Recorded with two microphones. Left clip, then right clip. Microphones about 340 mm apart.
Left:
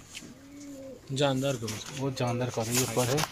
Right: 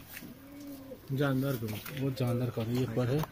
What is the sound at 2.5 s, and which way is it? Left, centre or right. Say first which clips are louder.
Speech: left 5 dB; left.